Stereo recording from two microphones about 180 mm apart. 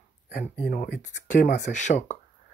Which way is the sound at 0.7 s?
45° left (ahead or behind).